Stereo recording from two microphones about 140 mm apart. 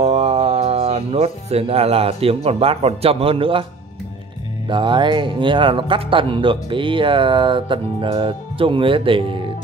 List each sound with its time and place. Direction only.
0.0 s speech: 50° right (ahead or behind)
4.6 s speech: 35° right (ahead or behind)